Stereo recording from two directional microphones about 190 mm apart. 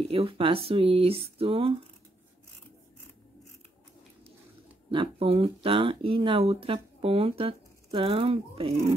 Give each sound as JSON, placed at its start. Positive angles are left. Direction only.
{"t": 0.1, "sound": "speech", "side_deg": -30}
{"t": 4.9, "sound": "speech", "side_deg": -30}